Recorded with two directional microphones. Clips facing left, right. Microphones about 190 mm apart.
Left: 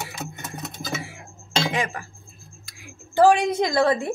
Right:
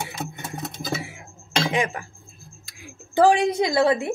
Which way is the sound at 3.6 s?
10° right (ahead or behind).